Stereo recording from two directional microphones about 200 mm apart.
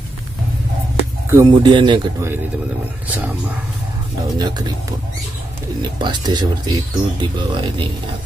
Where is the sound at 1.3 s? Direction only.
20° right (ahead or behind).